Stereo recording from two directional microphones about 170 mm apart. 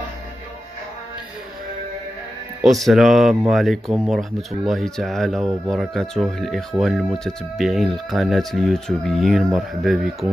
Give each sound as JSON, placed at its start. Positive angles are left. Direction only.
{"t": 2.6, "sound": "speech", "side_deg": 0}